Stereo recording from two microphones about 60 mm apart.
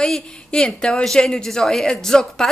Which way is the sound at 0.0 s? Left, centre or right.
Centre.